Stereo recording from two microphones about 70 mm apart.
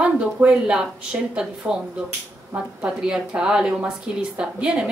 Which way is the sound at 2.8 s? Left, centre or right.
Centre.